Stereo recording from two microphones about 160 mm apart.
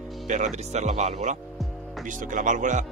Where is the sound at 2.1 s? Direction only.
55° right (ahead or behind).